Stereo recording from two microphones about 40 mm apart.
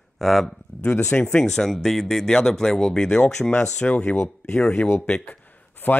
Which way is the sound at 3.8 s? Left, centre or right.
Left.